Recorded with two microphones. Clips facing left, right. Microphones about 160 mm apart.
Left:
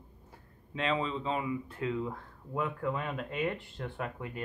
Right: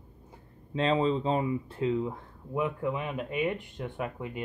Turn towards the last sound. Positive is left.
turn(degrees=-15)  # may be behind; listen again after turning